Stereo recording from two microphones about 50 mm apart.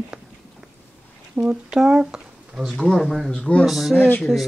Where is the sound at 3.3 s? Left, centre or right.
Left.